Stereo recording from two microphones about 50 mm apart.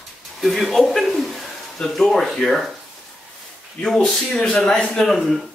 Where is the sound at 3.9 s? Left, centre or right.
Centre.